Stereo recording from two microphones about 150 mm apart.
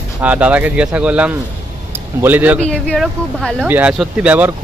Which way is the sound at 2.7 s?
Centre (ahead or behind).